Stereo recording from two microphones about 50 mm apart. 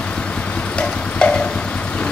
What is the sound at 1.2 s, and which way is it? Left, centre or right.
Vehicle, left.